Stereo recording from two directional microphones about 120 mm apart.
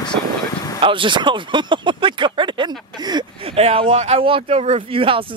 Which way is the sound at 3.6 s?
55° right (ahead or behind).